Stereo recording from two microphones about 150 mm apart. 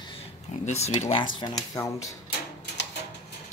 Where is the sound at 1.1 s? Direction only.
30° left (ahead or behind).